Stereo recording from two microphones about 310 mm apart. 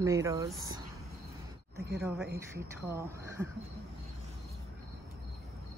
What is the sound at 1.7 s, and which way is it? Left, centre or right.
Speech, right.